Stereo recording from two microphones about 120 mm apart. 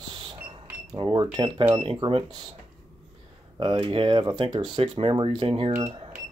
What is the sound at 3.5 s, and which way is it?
Speech, 40° right (ahead or behind).